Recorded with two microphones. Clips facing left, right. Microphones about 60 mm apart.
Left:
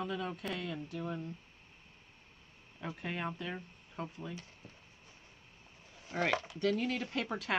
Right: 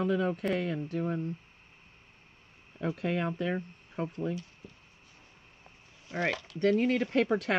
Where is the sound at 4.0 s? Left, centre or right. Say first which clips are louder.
Right 9 dB; right.